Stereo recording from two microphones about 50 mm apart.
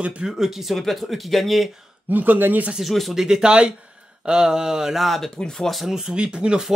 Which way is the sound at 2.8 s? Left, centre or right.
Centre.